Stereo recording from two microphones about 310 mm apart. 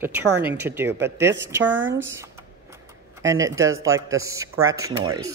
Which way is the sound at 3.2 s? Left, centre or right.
Centre.